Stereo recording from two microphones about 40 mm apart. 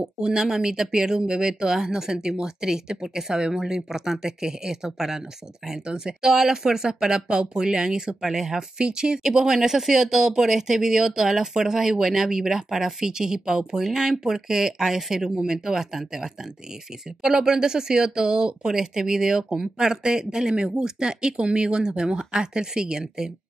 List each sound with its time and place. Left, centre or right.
0.2 s speech: centre
8.7 s speech: right